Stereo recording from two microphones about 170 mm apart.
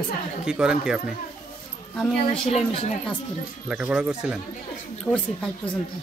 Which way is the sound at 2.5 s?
40° left (ahead or behind).